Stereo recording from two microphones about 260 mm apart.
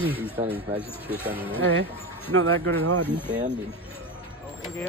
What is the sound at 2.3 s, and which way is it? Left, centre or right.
Speech, right.